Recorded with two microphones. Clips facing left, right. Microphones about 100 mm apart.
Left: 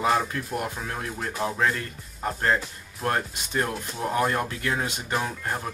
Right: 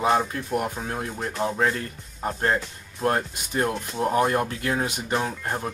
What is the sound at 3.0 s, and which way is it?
Speech, 25° right (ahead or behind).